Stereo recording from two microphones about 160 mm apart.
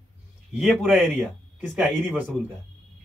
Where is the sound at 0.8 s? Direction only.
10° right (ahead or behind).